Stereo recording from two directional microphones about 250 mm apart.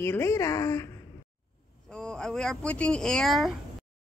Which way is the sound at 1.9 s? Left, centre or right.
Centre.